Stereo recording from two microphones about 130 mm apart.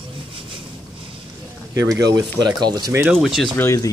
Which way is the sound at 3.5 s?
20° left (ahead or behind).